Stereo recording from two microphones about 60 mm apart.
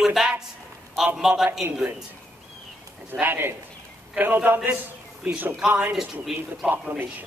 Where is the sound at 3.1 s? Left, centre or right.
Right.